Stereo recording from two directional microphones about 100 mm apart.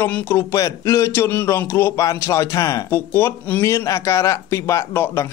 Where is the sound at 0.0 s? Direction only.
20° left (ahead or behind).